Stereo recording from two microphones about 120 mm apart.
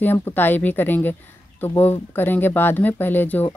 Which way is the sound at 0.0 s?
15° left (ahead or behind).